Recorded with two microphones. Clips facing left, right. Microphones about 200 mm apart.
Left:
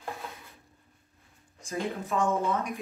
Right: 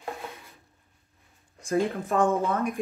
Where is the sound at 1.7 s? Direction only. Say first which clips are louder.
Right 6 dB; 55° right (ahead or behind).